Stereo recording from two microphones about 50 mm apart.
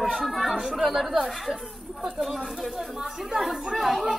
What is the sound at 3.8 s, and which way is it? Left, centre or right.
Speech, centre.